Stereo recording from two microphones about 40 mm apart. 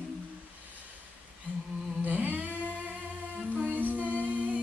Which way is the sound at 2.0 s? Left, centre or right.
Right.